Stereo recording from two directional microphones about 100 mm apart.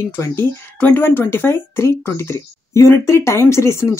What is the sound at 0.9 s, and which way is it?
Speech, 20° left (ahead or behind).